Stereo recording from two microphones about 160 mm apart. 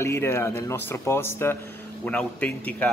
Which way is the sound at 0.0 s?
15° left (ahead or behind).